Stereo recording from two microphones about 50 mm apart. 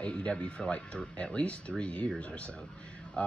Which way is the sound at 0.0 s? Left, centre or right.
Left.